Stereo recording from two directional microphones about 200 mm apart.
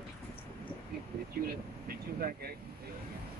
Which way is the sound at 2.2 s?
45° right (ahead or behind).